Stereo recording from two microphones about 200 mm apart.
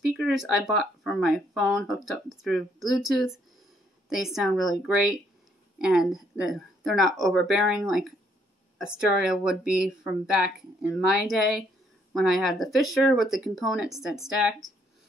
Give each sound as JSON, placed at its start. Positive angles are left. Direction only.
{"t": 0.0, "sound": "speech", "side_deg": 0}